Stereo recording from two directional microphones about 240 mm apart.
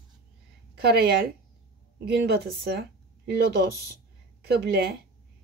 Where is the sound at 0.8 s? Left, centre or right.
Right.